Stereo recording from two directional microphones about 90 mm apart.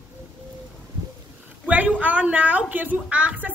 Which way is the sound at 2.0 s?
15° right (ahead or behind).